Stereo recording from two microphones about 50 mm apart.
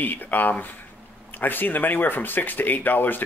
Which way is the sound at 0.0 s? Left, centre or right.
Left.